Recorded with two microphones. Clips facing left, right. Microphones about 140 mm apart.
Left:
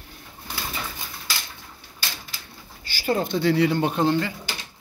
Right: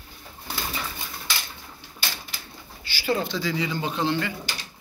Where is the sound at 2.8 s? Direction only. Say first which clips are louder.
Left 2 dB; 45° left (ahead or behind).